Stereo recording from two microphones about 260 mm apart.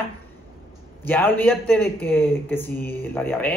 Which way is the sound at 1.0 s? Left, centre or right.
Centre.